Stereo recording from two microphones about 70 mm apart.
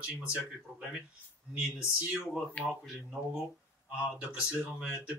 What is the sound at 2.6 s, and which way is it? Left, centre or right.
Speech, centre.